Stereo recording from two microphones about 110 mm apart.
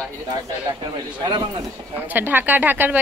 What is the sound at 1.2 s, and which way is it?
Speech, 45° right (ahead or behind).